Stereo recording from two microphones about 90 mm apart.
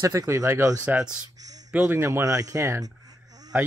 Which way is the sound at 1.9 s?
30° right (ahead or behind).